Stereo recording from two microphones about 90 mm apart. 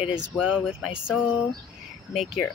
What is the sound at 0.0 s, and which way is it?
Speech, 10° right (ahead or behind).